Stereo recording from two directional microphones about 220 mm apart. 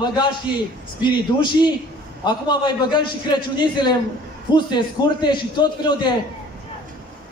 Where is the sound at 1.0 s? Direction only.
20° left (ahead or behind).